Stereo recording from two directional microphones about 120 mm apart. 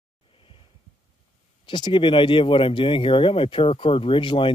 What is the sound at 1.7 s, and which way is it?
Speech, 40° left (ahead or behind).